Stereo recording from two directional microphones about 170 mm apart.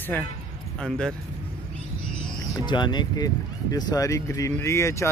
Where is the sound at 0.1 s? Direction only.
10° left (ahead or behind).